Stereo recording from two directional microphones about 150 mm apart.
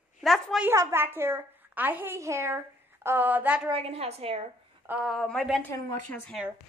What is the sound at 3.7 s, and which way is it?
Speech, 40° right (ahead or behind).